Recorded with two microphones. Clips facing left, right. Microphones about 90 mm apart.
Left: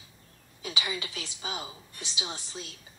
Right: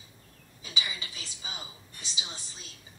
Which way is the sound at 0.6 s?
75° left (ahead or behind).